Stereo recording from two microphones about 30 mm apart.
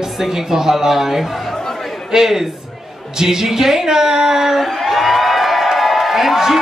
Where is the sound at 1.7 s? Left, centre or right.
Centre.